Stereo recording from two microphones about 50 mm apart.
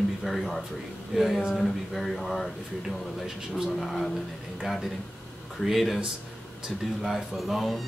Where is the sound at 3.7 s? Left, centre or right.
Centre.